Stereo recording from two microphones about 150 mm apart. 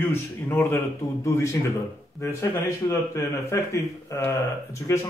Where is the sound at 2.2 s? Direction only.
20° left (ahead or behind).